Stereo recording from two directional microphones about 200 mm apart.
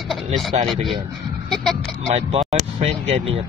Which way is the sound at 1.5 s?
Centre (ahead or behind).